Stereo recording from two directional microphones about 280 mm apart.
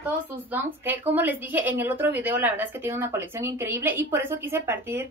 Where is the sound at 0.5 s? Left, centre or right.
Centre.